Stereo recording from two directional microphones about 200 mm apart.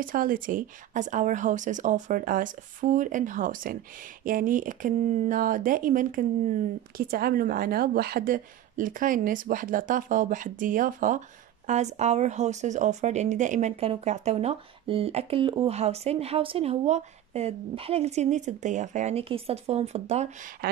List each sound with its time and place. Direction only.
0.0 s a woman's voice: 45° right (ahead or behind)